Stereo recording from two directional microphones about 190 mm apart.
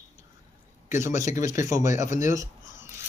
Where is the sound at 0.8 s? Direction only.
15° right (ahead or behind).